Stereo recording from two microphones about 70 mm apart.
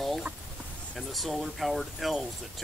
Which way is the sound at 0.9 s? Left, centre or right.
Centre.